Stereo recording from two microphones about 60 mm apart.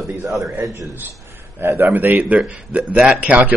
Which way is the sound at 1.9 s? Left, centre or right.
Right.